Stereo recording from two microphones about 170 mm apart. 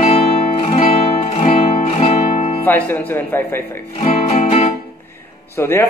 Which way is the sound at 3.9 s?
35° left (ahead or behind).